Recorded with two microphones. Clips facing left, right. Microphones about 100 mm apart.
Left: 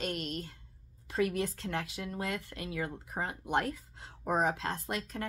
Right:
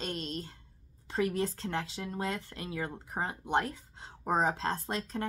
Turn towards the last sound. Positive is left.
turn(degrees=-30)  # may be behind; listen again after turning